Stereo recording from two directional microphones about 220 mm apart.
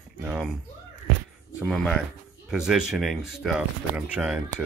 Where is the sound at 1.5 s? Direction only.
Centre (ahead or behind).